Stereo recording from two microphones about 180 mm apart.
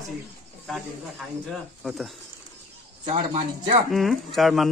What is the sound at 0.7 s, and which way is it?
Speech, centre (ahead or behind).